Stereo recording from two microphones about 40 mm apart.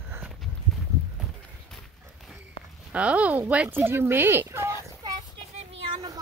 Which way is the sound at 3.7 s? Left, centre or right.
Right.